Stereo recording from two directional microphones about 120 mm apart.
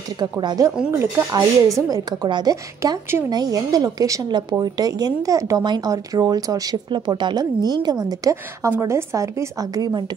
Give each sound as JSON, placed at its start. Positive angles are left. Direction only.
{"t": 0.2, "sound": "a woman's voice", "side_deg": -35}